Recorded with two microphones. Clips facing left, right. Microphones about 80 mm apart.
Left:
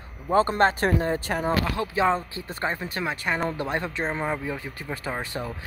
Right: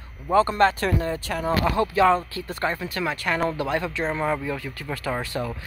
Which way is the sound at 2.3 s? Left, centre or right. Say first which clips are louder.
Right 2 dB; left.